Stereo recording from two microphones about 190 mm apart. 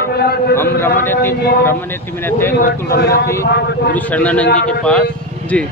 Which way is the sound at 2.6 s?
50° left (ahead or behind).